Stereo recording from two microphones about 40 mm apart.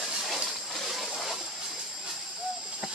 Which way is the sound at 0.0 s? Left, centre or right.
Centre.